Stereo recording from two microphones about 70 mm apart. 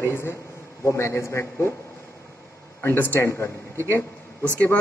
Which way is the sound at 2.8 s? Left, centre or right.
Left.